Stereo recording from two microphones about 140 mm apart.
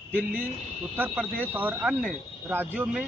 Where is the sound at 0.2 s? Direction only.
70° right (ahead or behind).